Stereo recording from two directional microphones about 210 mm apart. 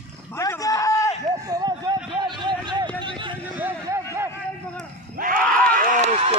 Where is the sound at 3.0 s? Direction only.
25° right (ahead or behind).